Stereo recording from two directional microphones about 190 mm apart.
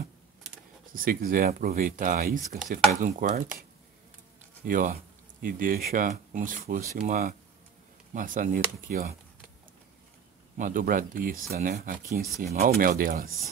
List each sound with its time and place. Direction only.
0.9 s speech: 45° right (ahead or behind)
4.6 s speech: 45° right (ahead or behind)
10.6 s speech: 45° right (ahead or behind)